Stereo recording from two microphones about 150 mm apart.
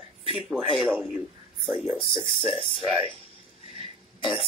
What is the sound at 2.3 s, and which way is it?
Speech, 40° right (ahead or behind).